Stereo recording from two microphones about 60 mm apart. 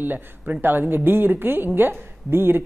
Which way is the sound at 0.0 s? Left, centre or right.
Right.